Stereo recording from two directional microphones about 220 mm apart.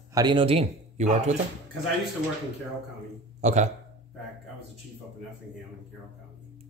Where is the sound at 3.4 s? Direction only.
30° right (ahead or behind).